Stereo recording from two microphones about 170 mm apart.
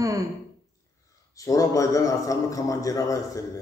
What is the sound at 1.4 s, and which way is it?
A man's voice, 20° left (ahead or behind).